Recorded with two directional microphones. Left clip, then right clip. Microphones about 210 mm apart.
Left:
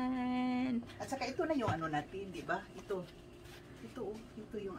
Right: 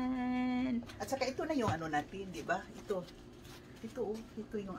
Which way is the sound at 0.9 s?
55° right (ahead or behind).